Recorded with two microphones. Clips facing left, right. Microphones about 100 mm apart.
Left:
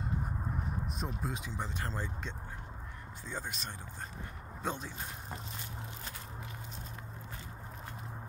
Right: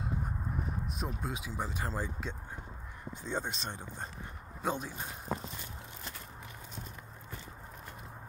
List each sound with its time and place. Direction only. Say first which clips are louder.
0.9 s speech: even; 5° right (ahead or behind)
3.1 s speech: right 6 dB; 25° right (ahead or behind)
4.6 s speech: right 3 dB; 15° right (ahead or behind)